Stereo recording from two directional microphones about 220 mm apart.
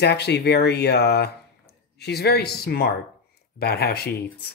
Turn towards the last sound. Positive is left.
turn(degrees=45)  # may be behind; listen again after turning